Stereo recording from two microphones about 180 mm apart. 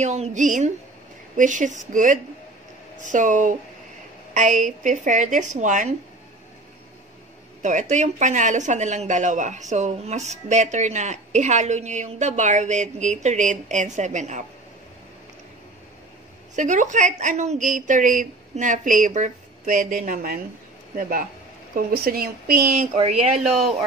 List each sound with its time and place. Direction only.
0.0 s a woman's voice: 40° right (ahead or behind)
7.6 s speech: 45° right (ahead or behind)
16.5 s a woman's voice: 45° right (ahead or behind)